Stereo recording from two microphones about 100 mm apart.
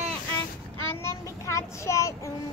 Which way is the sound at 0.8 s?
30° left (ahead or behind).